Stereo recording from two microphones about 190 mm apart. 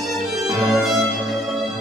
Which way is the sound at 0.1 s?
Centre (ahead or behind).